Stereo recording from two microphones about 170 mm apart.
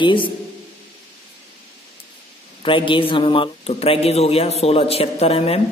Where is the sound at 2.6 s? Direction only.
30° left (ahead or behind).